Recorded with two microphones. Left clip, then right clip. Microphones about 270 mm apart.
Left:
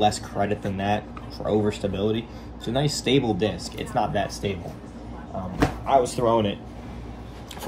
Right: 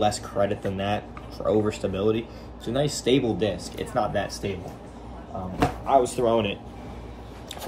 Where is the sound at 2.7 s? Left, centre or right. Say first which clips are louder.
Even; centre.